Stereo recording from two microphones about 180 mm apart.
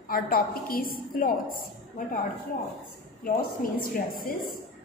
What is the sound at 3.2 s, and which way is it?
A woman's voice, 50° left (ahead or behind).